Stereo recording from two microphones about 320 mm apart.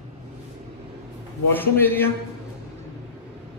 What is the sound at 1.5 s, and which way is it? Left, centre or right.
Speech, centre.